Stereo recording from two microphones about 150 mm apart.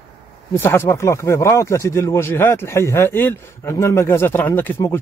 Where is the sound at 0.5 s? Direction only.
15° left (ahead or behind).